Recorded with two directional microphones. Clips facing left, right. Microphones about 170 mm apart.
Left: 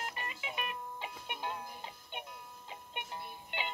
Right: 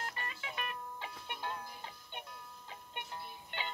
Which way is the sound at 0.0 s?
15° left (ahead or behind).